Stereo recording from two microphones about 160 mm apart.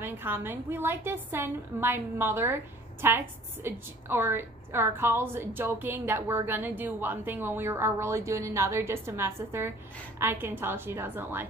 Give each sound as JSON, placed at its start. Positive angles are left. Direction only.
{"t": 0.0, "sound": "a woman's voice", "side_deg": -15}